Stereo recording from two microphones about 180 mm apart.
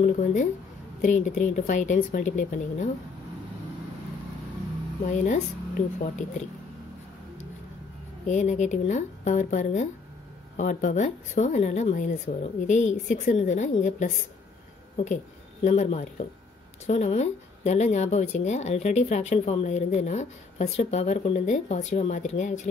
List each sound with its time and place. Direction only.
0.0 s speech: 45° left (ahead or behind)
5.1 s speech: 45° left (ahead or behind)
8.3 s speech: 40° left (ahead or behind)
15.6 s speech: 40° left (ahead or behind)